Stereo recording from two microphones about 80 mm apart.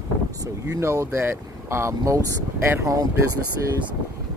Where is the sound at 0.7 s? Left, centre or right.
Right.